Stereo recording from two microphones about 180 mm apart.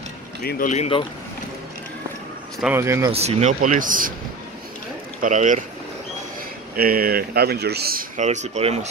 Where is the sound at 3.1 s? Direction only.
35° right (ahead or behind).